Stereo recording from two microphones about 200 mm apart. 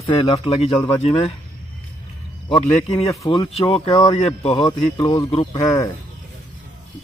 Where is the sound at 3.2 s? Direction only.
25° left (ahead or behind).